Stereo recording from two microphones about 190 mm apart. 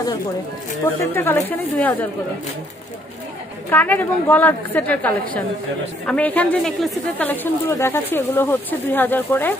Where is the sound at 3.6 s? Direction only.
10° left (ahead or behind).